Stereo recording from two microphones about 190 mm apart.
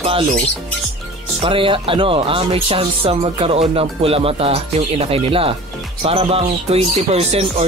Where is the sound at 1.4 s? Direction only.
30° right (ahead or behind).